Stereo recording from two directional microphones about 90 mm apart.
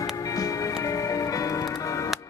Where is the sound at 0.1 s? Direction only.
40° left (ahead or behind).